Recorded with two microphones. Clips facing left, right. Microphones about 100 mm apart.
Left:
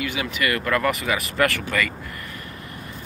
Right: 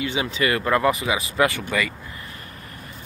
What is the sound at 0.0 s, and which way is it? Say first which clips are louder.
Speech: right 2 dB; 25° right (ahead or behind).